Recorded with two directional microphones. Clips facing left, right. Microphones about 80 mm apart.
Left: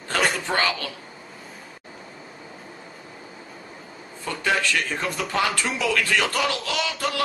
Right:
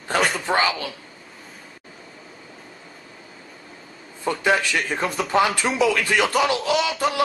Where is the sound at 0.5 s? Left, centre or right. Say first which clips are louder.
Right 3 dB; centre.